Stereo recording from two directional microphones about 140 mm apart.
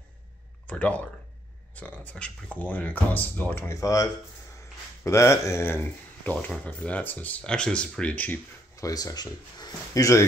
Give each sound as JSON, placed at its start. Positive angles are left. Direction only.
{"t": 0.7, "sound": "speech", "side_deg": 10}
{"t": 8.7, "sound": "speech", "side_deg": 25}